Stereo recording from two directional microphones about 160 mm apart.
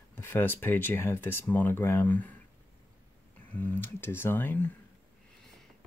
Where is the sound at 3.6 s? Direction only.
10° left (ahead or behind).